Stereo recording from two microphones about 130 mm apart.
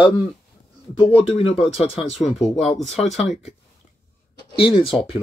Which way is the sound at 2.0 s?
55° left (ahead or behind).